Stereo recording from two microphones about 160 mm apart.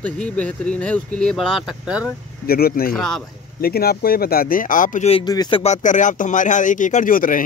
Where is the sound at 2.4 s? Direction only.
70° left (ahead or behind).